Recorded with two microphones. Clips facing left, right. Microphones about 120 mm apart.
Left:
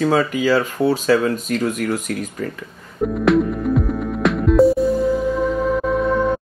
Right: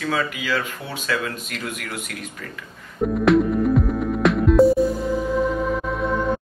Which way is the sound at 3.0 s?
Centre (ahead or behind).